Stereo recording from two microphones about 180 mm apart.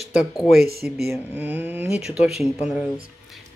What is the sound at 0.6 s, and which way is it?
Speech, 60° right (ahead or behind).